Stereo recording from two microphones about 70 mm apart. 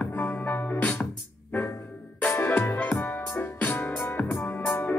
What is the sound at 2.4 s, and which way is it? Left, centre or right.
Music, left.